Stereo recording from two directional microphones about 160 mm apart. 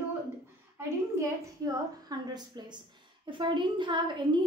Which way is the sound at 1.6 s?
25° right (ahead or behind).